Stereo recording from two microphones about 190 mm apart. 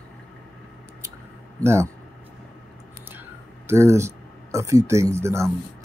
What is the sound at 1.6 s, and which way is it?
Speech, 15° right (ahead or behind).